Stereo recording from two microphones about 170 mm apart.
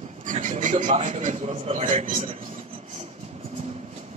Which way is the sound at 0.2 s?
50° right (ahead or behind).